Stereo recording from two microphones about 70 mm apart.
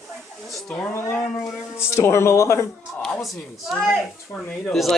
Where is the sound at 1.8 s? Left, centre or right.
Left.